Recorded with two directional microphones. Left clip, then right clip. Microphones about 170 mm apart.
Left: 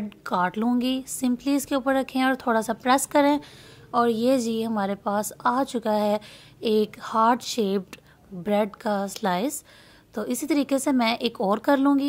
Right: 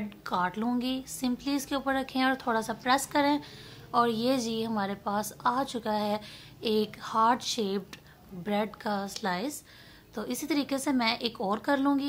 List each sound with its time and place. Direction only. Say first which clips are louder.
0.2 s a woman's voice: left 5 dB; 40° left (ahead or behind)